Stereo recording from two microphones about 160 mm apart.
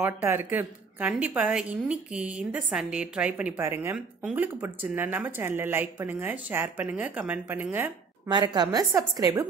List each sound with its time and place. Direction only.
0.0 s a woman's voice: 15° right (ahead or behind)
8.3 s a woman's voice: 25° right (ahead or behind)